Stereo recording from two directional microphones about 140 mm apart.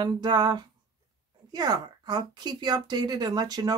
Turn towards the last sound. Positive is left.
turn(degrees=-30)  # may be behind; listen again after turning